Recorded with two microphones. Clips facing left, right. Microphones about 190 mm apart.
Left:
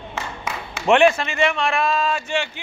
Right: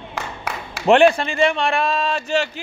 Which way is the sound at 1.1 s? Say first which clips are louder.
Right 3 dB; 35° right (ahead or behind).